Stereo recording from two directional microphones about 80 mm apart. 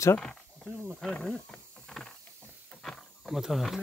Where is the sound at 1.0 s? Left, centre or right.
Centre.